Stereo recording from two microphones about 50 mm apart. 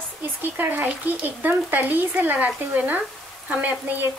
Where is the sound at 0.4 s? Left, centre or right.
Right.